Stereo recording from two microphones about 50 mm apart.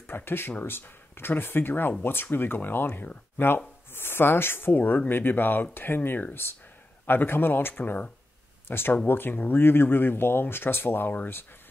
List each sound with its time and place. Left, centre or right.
0.0 s speech: left
4.7 s speech: left
8.6 s speech: left